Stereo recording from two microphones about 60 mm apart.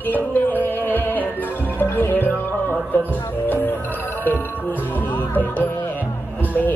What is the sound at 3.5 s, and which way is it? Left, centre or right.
Music, left.